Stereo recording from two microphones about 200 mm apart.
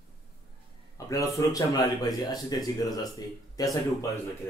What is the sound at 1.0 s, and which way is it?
Speech, 15° left (ahead or behind).